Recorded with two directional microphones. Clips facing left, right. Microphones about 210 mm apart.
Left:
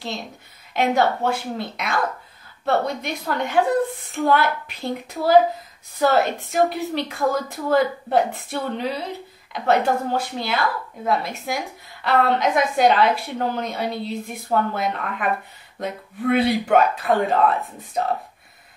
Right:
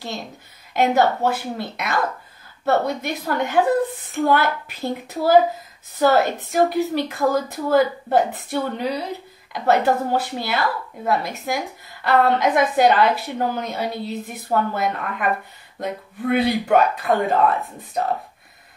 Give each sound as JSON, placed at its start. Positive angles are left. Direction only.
{"t": 0.7, "sound": "a woman's voice", "side_deg": 0}